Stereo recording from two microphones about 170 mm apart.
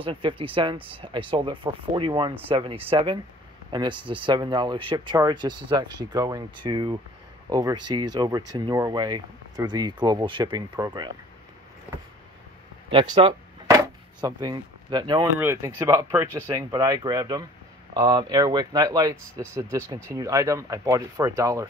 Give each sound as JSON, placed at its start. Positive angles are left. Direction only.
{"t": 0.0, "sound": "speech", "side_deg": -30}
{"t": 12.9, "sound": "a sound", "side_deg": -30}
{"t": 15.3, "sound": "speech", "side_deg": -15}